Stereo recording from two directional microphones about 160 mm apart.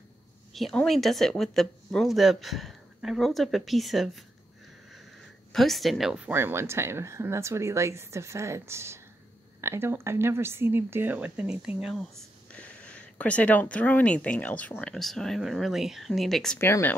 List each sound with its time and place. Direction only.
0.5 s speech: centre (ahead or behind)
5.5 s speech: centre (ahead or behind)
16.5 s speech: 15° left (ahead or behind)